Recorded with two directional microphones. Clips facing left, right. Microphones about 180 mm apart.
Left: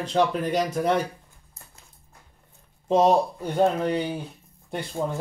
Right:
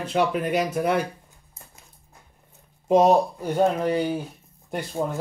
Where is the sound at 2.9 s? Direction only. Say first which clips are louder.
Right 2 dB; 10° right (ahead or behind).